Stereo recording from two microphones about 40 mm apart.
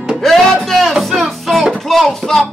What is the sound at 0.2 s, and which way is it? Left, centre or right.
Music, centre.